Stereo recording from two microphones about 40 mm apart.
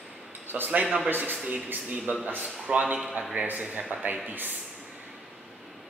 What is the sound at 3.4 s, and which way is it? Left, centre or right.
Speech, right.